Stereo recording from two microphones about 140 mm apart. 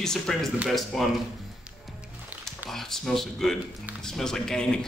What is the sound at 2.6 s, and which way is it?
Speech, centre (ahead or behind).